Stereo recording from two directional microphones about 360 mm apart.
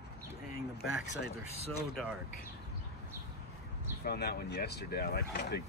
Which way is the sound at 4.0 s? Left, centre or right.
Left.